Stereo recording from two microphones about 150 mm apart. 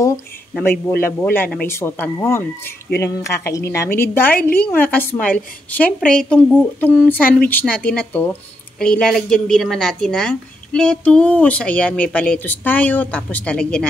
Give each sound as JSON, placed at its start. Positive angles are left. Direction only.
{"t": 0.6, "sound": "speech", "side_deg": 15}